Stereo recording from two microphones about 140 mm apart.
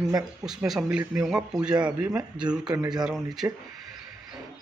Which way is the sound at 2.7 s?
30° right (ahead or behind).